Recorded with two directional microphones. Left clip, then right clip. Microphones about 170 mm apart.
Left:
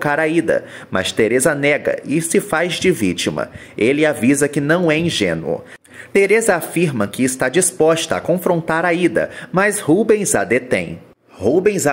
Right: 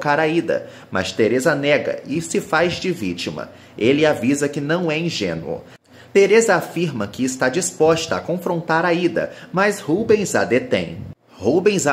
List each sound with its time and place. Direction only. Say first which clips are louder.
0.0 s speech: left 2 dB; 30° left (ahead or behind)
11.4 s speech: left 2 dB; 20° left (ahead or behind)